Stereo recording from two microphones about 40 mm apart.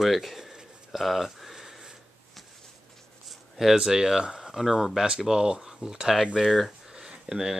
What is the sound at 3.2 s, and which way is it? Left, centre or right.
Speech, centre.